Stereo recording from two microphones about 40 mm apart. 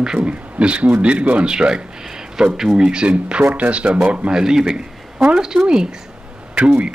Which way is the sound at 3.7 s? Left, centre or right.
Right.